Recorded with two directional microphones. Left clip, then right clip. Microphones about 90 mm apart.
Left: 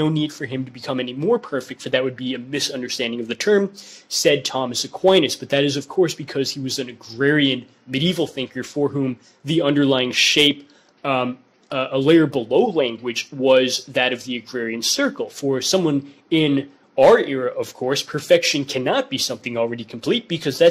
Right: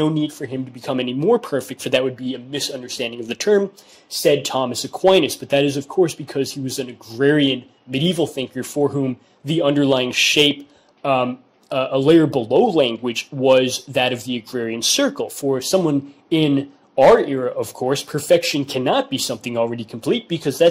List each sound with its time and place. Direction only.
0.0 s speech: 30° right (ahead or behind)
2.0 s speech: 20° right (ahead or behind)
2.7 s speech: 30° right (ahead or behind)